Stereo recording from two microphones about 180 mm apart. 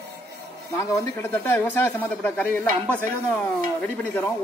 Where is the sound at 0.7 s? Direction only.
15° left (ahead or behind).